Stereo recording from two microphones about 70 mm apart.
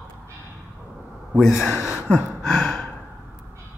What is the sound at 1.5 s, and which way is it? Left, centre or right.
Speech, left.